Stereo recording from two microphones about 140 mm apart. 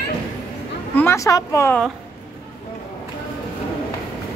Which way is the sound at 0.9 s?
20° left (ahead or behind).